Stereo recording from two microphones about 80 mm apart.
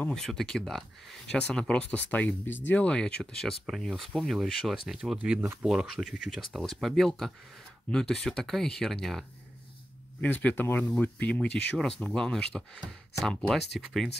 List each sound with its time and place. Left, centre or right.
0.1 s speech: centre
6.6 s speech: centre
10.2 s speech: centre